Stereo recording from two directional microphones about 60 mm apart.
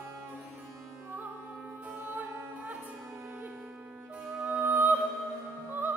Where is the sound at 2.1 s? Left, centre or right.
Right.